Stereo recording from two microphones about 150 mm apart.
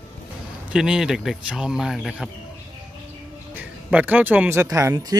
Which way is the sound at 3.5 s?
10° right (ahead or behind).